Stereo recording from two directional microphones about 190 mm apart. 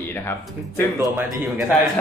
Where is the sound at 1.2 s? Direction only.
10° right (ahead or behind).